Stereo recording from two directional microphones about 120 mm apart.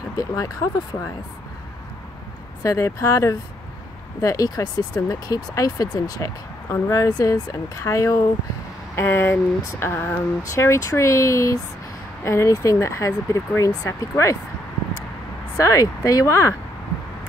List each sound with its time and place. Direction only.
0.2 s speech: 30° left (ahead or behind)
2.6 s speech: 25° left (ahead or behind)
15.5 s speech: 25° left (ahead or behind)